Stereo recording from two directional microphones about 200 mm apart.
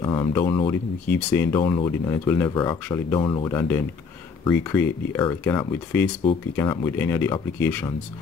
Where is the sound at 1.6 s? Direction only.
20° left (ahead or behind).